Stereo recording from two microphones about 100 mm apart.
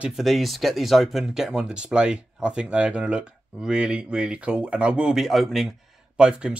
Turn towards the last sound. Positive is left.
turn(degrees=-10)  # may be behind; listen again after turning